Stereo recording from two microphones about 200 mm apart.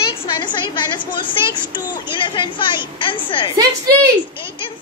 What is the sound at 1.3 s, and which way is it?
A woman's voice, 25° left (ahead or behind).